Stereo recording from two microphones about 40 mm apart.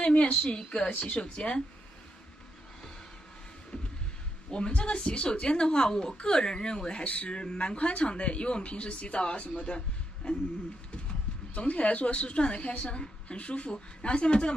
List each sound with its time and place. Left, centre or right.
0.0 s a woman's voice: left
0.8 s a woman's voice: left
3.7 s a sound: left
4.5 s a woman's voice: left
7.1 s speech: left
7.3 s a woman's voice: left
11.5 s a woman's voice: left